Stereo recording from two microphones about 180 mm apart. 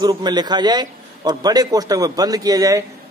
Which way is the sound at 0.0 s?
25° right (ahead or behind).